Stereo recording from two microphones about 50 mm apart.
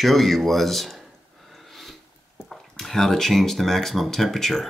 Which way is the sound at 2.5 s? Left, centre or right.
Centre.